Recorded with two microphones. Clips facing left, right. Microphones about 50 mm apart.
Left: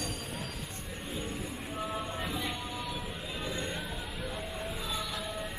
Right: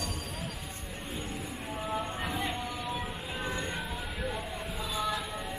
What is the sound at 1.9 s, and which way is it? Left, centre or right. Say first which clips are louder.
Train: right 2 dB; right.